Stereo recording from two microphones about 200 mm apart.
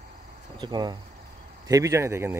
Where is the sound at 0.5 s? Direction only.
20° right (ahead or behind).